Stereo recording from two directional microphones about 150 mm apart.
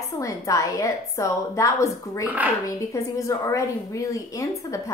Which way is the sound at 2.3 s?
10° right (ahead or behind).